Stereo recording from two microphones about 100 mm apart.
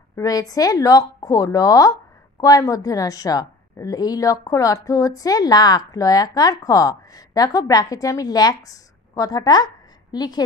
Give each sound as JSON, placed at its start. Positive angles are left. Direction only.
{"t": 0.2, "sound": "a woman's voice", "side_deg": 35}